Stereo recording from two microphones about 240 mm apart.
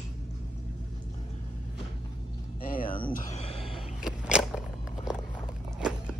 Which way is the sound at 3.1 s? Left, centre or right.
Left.